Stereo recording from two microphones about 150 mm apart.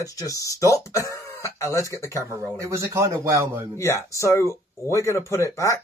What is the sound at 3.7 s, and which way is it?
Speech, 20° left (ahead or behind).